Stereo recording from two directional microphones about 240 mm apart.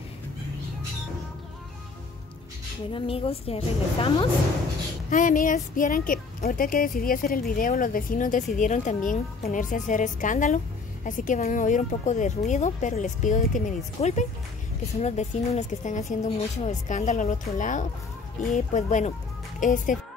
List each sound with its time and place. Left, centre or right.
2.9 s a woman's voice: left
5.1 s speech: left